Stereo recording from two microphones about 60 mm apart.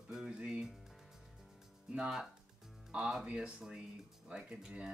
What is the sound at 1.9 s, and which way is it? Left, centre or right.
Speech, centre.